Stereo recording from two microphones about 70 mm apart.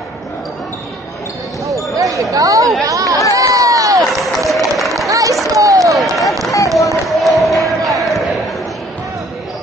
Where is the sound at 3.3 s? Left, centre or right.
Right.